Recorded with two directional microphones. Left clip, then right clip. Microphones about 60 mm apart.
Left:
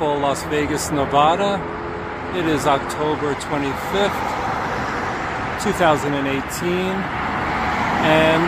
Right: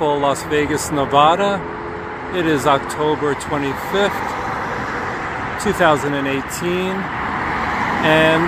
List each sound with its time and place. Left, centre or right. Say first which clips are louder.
0.0 s speech: right 3 dB; right
0.3 s speech: right 3 dB; right
2.4 s speech: right 3 dB; right
5.8 s speech: right 2 dB; right
8.0 s speech: right 2 dB; right